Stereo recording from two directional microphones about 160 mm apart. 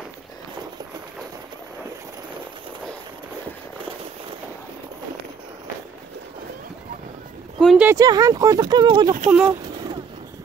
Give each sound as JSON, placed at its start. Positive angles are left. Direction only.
{"t": 7.6, "sound": "speech", "side_deg": -5}
{"t": 7.9, "sound": "speech", "side_deg": -20}
{"t": 9.3, "sound": "speech", "side_deg": -10}